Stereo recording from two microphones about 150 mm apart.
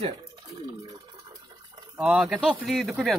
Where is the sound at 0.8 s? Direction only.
25° right (ahead or behind).